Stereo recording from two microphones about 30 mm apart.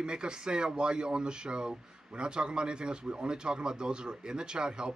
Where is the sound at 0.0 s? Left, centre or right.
Right.